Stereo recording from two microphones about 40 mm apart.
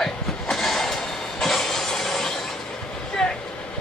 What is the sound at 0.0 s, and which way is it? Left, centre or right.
Vehicle, centre.